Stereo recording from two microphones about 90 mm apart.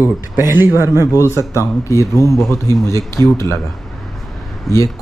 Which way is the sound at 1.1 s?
35° left (ahead or behind).